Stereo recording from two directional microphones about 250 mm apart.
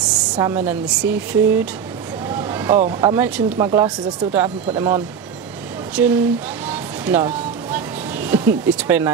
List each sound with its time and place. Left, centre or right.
0.4 s speech: centre
2.2 s a sound: centre
3.0 s speech: centre
6.7 s music: centre